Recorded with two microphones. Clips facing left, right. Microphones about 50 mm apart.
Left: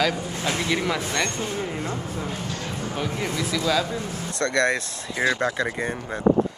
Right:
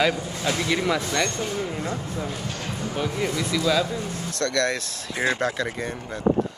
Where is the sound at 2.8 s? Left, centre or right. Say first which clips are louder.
Right 2 dB; left.